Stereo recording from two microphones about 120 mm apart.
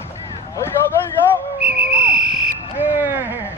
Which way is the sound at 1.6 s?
10° right (ahead or behind).